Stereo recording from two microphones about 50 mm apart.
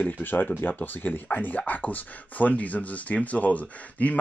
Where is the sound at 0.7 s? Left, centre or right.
Left.